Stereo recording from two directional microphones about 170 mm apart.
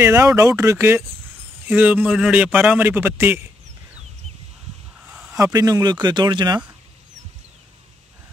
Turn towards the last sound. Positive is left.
turn(degrees=-25)  # may be behind; listen again after turning